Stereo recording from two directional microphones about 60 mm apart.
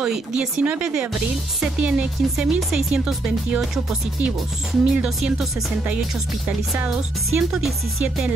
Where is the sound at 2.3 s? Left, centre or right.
Centre.